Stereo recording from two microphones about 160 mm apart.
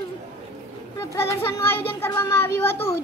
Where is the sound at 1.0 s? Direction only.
20° left (ahead or behind).